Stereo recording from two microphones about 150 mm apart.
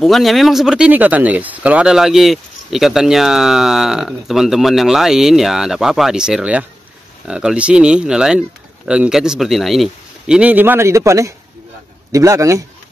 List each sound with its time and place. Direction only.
0.0 s a man's voice: centre (ahead or behind); by 12.6 s 20° right (ahead or behind)